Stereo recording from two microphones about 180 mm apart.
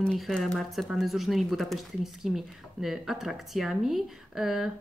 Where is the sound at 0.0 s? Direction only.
5° left (ahead or behind).